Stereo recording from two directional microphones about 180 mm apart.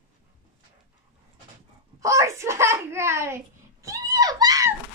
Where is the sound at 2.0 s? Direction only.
15° right (ahead or behind).